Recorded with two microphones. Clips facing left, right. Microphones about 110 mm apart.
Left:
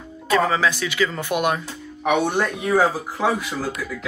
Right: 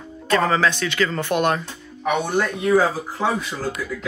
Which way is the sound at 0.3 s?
5° left (ahead or behind).